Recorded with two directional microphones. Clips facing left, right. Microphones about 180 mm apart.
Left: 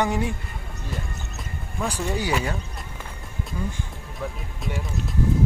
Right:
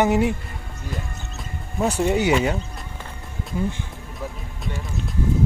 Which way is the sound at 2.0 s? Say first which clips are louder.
Right 7 dB; 20° right (ahead or behind).